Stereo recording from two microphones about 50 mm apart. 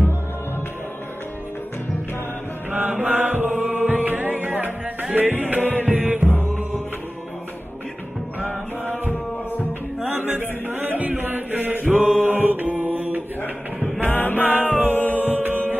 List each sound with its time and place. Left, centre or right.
2.7 s mantra: right
3.5 s music: right
10.0 s chant: right
11.8 s chant: right
12.3 s mantra: right
13.9 s music: left
15.4 s music: right